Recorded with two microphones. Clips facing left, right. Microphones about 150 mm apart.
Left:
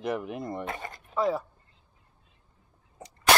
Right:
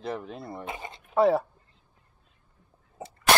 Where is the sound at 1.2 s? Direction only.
65° right (ahead or behind).